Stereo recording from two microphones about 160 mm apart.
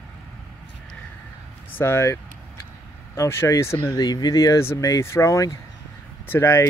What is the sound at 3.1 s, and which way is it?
Speech, 15° left (ahead or behind).